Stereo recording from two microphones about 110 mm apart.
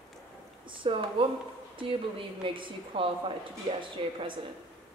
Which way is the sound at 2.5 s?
55° right (ahead or behind).